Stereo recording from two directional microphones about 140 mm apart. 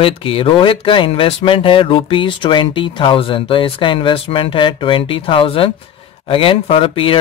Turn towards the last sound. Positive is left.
turn(degrees=40)  # may be behind; listen again after turning